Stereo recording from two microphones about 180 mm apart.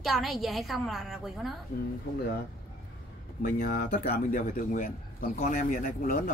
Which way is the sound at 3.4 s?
50° left (ahead or behind).